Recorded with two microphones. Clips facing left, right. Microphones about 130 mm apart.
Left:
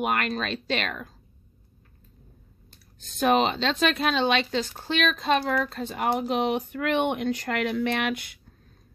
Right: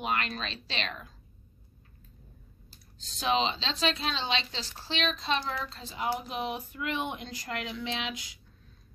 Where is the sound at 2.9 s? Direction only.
55° left (ahead or behind).